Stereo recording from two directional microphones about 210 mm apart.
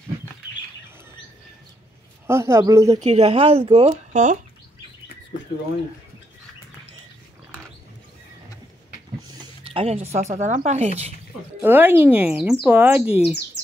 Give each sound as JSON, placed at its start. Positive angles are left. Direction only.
{"t": 2.2, "sound": "speech", "side_deg": -10}
{"t": 3.0, "sound": "speech", "side_deg": -30}
{"t": 9.8, "sound": "speech", "side_deg": -30}
{"t": 11.6, "sound": "speech", "side_deg": -10}